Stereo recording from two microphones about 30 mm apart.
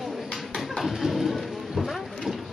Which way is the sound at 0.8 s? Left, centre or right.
Centre.